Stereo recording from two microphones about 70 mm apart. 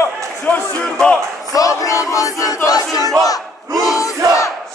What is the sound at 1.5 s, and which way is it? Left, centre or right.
Battle cry, left.